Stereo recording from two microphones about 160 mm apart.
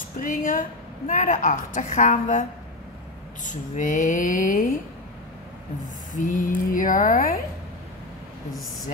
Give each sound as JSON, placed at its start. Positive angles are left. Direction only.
{"t": 0.2, "sound": "a woman's voice", "side_deg": 55}
{"t": 3.4, "sound": "a woman's voice", "side_deg": 50}
{"t": 6.1, "sound": "speech", "side_deg": 55}